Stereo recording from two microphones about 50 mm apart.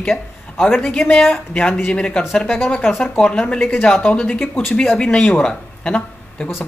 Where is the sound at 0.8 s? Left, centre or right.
Left.